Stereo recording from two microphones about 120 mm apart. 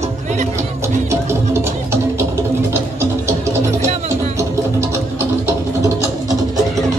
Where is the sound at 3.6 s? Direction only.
70° right (ahead or behind).